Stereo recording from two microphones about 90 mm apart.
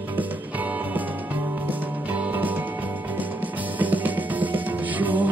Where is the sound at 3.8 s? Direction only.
20° right (ahead or behind).